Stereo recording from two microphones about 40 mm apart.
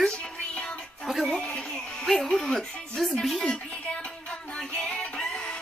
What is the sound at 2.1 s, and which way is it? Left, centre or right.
A woman's voice, centre.